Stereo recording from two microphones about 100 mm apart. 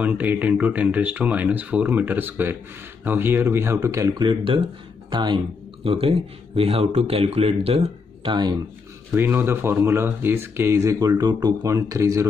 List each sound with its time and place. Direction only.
0.0 s speech: 15° right (ahead or behind); by 4.1 s 30° right (ahead or behind)
4.1 s speech: 50° right (ahead or behind)
5.9 s speech: 70° right (ahead or behind)
9.1 s speech: 20° right (ahead or behind)